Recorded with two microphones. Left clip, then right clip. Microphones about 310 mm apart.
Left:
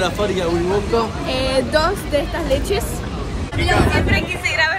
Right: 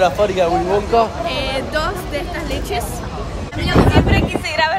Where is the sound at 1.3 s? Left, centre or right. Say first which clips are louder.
Left 2 dB; centre.